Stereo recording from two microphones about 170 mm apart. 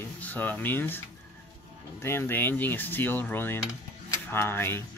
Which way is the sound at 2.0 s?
15° left (ahead or behind).